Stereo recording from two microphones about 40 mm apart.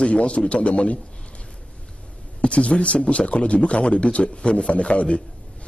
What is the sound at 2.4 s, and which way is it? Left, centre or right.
A man's voice, left.